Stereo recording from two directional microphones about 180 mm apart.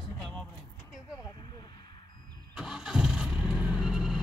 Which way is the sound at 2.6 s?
Centre (ahead or behind).